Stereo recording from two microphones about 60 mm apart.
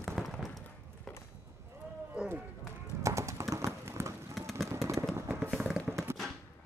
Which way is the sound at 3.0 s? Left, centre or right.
Right.